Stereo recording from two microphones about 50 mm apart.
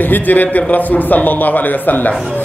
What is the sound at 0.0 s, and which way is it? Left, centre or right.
A man's voice, left.